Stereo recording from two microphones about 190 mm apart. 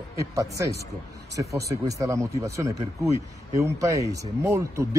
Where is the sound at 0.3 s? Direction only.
15° right (ahead or behind).